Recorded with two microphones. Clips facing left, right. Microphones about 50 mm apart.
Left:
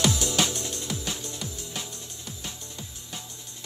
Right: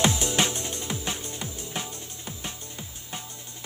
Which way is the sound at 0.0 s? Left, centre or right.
Right.